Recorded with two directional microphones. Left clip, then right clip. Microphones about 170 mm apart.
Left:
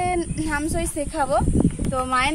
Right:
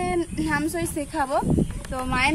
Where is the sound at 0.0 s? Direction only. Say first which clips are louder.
Left 2 dB; 10° left (ahead or behind).